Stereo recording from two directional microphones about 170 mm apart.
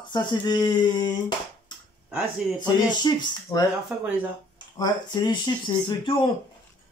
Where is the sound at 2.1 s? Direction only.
5° right (ahead or behind).